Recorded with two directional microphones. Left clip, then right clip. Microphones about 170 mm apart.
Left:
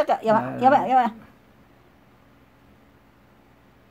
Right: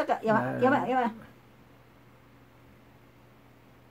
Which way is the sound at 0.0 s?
60° left (ahead or behind).